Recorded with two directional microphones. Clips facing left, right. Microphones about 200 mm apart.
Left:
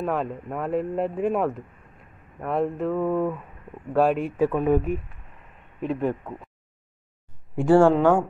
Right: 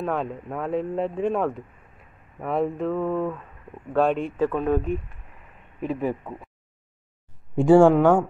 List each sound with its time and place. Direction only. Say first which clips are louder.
0.0 s speech: left 1 dB; centre (ahead or behind)
7.5 s speech: right 2 dB; 15° right (ahead or behind)